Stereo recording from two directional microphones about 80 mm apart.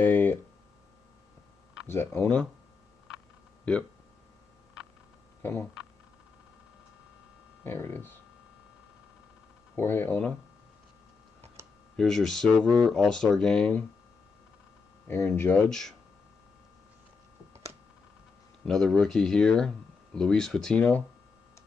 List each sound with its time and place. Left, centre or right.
0.0 s a sound: left
1.9 s speech: left
3.7 s speech: centre
5.4 s speech: left
7.6 s speech: left
9.8 s speech: left
12.0 s speech: centre
15.0 s speech: left
18.7 s speech: centre